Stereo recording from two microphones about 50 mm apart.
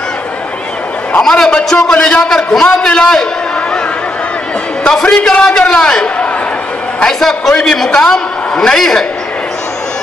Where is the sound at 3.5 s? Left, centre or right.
Centre.